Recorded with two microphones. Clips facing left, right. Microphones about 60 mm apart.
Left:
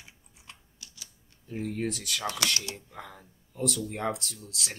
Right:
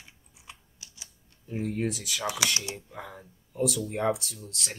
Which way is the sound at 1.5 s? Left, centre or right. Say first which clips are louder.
Right 2 dB; centre.